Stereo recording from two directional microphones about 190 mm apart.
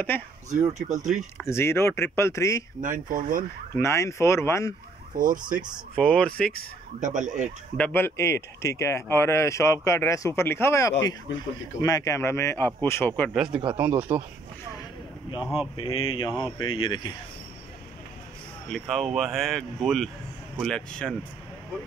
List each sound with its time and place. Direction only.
0.7 s speech: 40° right (ahead or behind)
1.4 s speech: 15° left (ahead or behind)
2.8 s speech: 45° right (ahead or behind)
3.7 s speech: 15° left (ahead or behind)
5.1 s speech: 45° right (ahead or behind)
5.9 s speech: 5° left (ahead or behind)
7.0 s speech: 40° right (ahead or behind)
7.7 s speech: 10° left (ahead or behind); by 14.2 s 10° right (ahead or behind)
15.4 s speech: 5° right (ahead or behind)
15.7 s speech: 30° left (ahead or behind)
18.7 s speech: centre (ahead or behind)